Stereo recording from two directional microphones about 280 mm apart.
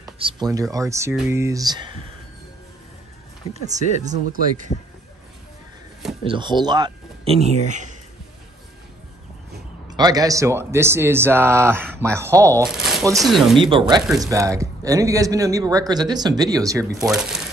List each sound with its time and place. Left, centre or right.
0.0 s speech: centre
3.6 s speech: right
6.2 s speech: centre
9.8 s speech: centre
13.6 s speech: centre
17.0 s speech: centre